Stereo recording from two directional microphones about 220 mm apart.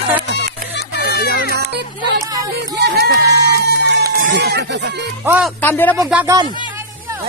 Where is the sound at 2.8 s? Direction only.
50° right (ahead or behind).